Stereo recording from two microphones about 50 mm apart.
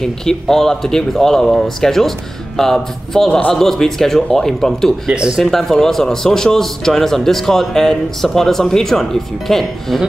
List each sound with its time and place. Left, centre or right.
0.0 s a man's voice: centre
3.3 s a man's voice: left
3.5 s a man's voice: centre
5.1 s speech: centre
5.4 s a man's voice: centre